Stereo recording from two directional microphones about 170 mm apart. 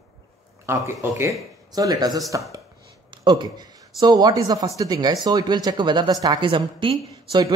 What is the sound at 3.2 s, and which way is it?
Speech, 25° right (ahead or behind).